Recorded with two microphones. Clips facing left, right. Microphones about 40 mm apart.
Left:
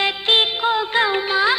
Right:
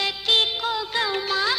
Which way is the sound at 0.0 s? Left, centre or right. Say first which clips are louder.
Left 4 dB; left.